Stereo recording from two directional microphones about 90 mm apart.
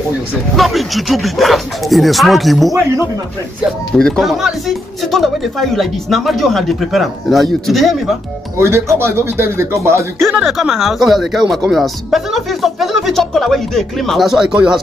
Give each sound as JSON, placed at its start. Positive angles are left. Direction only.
{"t": 0.6, "sound": "speech", "side_deg": 0}
{"t": 3.9, "sound": "speech", "side_deg": 5}
{"t": 8.5, "sound": "speech", "side_deg": -30}
{"t": 10.3, "sound": "speech", "side_deg": -5}